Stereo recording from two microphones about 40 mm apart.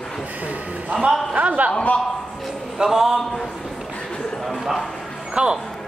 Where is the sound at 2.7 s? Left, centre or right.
Centre.